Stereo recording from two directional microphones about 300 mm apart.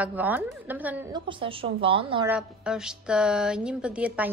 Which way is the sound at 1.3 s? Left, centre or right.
Centre.